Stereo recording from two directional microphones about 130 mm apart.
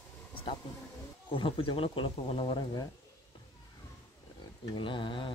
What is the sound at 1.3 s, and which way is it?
Speech, 40° left (ahead or behind).